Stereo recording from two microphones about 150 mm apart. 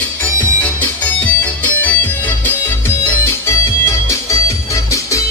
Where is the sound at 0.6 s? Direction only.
10° left (ahead or behind).